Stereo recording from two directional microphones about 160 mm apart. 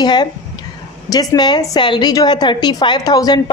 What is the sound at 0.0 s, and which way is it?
A woman's voice, 25° left (ahead or behind).